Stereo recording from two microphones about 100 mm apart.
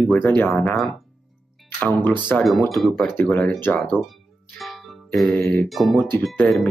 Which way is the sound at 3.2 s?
15° left (ahead or behind).